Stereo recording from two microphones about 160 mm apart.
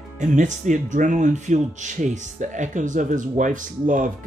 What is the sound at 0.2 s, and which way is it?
Speech, 50° right (ahead or behind).